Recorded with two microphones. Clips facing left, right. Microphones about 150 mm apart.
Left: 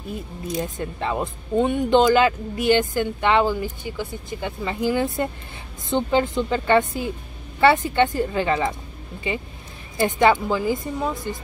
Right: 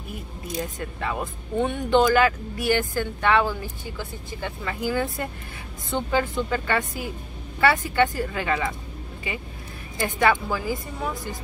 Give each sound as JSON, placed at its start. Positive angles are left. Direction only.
{"t": 0.6, "sound": "speech", "side_deg": 25}